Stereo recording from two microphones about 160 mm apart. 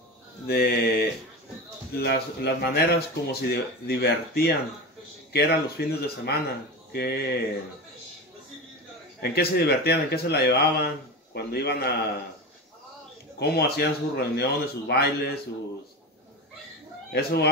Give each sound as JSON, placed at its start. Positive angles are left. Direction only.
{"t": 0.5, "sound": "speech", "side_deg": 80}
{"t": 2.0, "sound": "speech", "side_deg": 90}
{"t": 9.2, "sound": "speech", "side_deg": 80}
{"t": 13.4, "sound": "speech", "side_deg": 85}
{"t": 17.1, "sound": "speech", "side_deg": 85}